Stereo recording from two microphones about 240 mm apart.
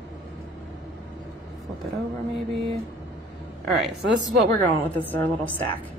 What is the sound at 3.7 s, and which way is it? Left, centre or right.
A woman's voice, centre.